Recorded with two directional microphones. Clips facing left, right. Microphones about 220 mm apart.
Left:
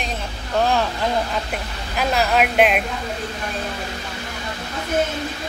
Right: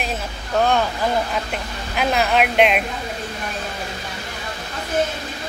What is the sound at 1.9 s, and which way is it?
Speech, centre (ahead or behind).